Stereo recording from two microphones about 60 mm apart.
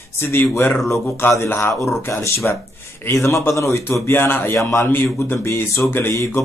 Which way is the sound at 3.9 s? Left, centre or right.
Left.